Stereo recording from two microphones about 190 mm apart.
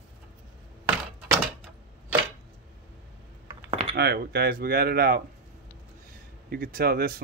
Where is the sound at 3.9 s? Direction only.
60° right (ahead or behind).